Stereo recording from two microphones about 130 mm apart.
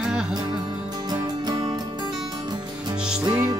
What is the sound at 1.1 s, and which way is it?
Music, 30° right (ahead or behind).